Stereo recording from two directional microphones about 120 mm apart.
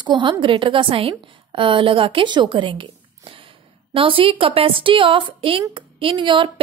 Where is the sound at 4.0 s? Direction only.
50° right (ahead or behind).